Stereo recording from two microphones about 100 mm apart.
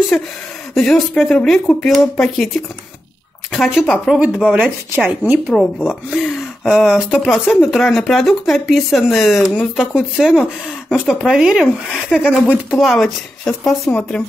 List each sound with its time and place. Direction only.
0.1 s speech: 5° left (ahead or behind)
3.5 s speech: centre (ahead or behind)
4.2 s speech: 10° right (ahead or behind)
5.9 s speech: centre (ahead or behind)